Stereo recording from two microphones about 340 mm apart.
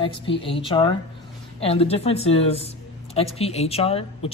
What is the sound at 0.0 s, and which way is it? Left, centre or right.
A woman's voice, centre.